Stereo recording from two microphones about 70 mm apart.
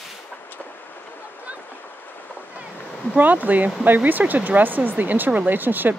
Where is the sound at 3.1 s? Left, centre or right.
Right.